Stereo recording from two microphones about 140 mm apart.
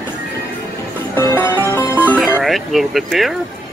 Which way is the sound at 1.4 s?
15° left (ahead or behind).